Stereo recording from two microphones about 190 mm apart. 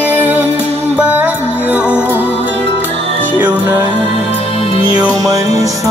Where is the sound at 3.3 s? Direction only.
10° right (ahead or behind).